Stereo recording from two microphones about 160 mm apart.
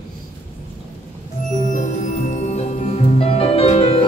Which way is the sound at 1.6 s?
50° left (ahead or behind).